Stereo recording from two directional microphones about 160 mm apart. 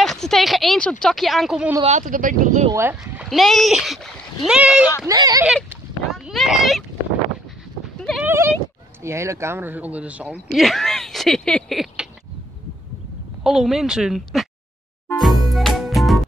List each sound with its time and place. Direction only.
0.0 s speech: centre (ahead or behind)
1.8 s speech: 45° right (ahead or behind)
2.7 s speech: 10° right (ahead or behind)
5.0 s speech: 25° right (ahead or behind)
6.1 s speech: centre (ahead or behind)
8.2 s speech: 15° right (ahead or behind)
13.4 s speech: centre (ahead or behind)
15.1 s music: centre (ahead or behind)